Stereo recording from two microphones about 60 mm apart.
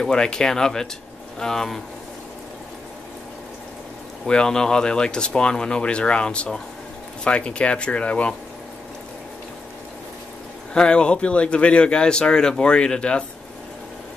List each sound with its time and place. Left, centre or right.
0.0 s speech: centre
4.3 s speech: centre
10.7 s speech: centre